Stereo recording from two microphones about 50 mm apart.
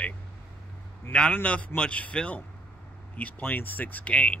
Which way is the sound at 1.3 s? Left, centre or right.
Left.